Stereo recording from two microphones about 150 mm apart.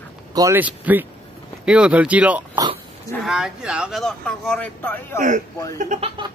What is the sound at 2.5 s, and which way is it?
Dog, 30° right (ahead or behind).